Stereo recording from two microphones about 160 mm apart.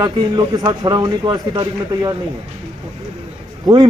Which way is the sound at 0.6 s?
25° right (ahead or behind).